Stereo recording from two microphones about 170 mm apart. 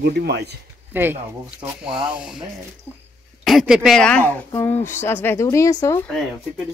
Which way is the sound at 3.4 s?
Centre (ahead or behind).